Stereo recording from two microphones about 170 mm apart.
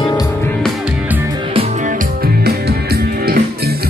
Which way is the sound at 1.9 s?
65° right (ahead or behind).